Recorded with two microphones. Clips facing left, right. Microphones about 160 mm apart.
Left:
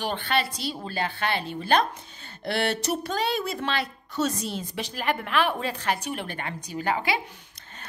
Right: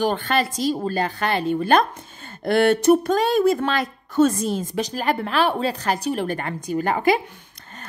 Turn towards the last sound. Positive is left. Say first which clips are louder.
# right 7 dB
turn(degrees=-45)  # may be behind; listen again after turning